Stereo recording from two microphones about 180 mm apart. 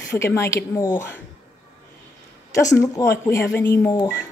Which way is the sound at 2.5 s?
20° left (ahead or behind).